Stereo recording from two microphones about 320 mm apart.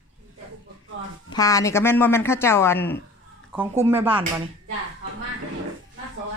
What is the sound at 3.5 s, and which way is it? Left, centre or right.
Speech, centre.